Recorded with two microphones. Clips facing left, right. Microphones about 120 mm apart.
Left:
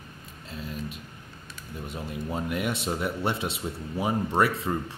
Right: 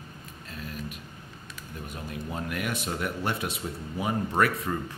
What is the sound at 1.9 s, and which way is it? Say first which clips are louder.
Speech: left 3 dB; 25° left (ahead or behind).